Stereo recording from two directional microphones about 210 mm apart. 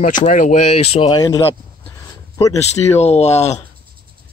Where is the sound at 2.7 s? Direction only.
30° left (ahead or behind).